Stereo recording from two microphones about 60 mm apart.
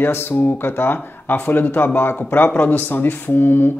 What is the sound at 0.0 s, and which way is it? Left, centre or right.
Speech, left.